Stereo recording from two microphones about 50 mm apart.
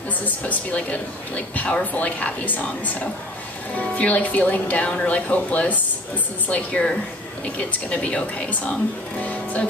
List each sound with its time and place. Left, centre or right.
0.2 s speech: left
9.2 s music: left